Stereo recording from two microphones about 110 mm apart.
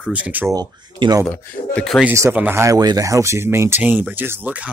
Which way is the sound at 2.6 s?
30° right (ahead or behind).